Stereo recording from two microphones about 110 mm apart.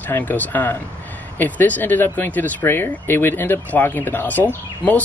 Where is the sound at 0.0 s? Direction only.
15° left (ahead or behind).